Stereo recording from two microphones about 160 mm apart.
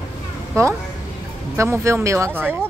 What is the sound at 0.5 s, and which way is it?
A woman's voice, 15° right (ahead or behind).